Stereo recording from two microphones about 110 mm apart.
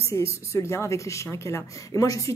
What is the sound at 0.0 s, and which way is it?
A woman's voice, 25° left (ahead or behind).